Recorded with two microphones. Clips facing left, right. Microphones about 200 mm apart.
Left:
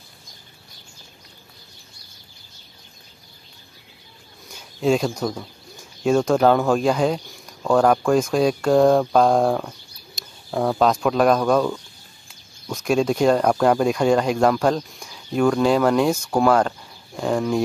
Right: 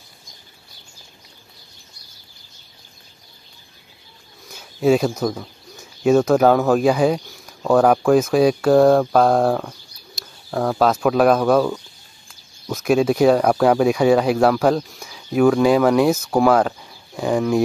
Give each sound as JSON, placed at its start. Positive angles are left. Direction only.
{"t": 4.5, "sound": "speech", "side_deg": -5}